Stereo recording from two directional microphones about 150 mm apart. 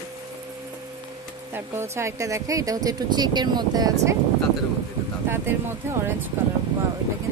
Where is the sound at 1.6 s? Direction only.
15° right (ahead or behind).